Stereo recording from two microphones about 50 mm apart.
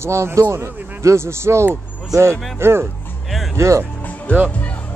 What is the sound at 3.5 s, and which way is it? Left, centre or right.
Speech, right.